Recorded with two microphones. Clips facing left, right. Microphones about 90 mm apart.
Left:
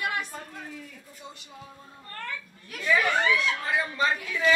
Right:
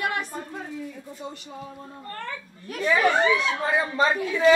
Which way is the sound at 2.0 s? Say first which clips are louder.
Right 2 dB; 30° right (ahead or behind).